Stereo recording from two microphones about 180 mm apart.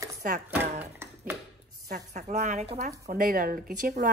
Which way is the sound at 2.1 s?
40° right (ahead or behind).